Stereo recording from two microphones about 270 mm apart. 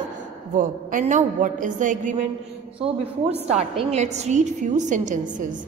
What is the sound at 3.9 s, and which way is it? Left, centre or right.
A woman's voice, right.